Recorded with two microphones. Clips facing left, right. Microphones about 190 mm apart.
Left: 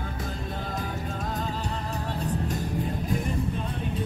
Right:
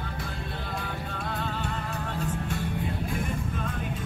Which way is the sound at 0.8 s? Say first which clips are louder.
Left 2 dB; 40° left (ahead or behind).